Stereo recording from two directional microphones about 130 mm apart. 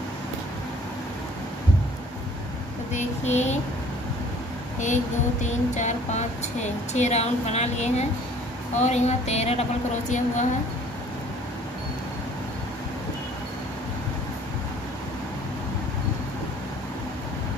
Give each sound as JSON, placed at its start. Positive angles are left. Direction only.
{"t": 2.9, "sound": "speech", "side_deg": 60}
{"t": 5.4, "sound": "speech", "side_deg": 65}